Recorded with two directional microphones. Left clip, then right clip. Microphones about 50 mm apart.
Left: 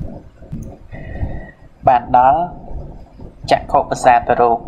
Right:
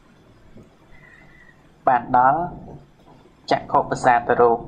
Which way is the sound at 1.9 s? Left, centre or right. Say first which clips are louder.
Left 5 dB; left.